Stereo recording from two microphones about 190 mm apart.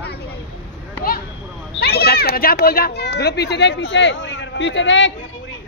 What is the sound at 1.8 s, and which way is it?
Speech, 55° left (ahead or behind).